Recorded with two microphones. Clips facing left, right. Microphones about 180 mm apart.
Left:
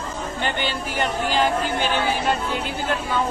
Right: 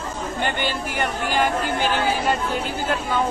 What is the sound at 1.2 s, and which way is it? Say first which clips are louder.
Speech: even; 50° right (ahead or behind).